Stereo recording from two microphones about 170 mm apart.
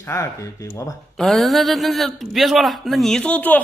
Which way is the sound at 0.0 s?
15° left (ahead or behind).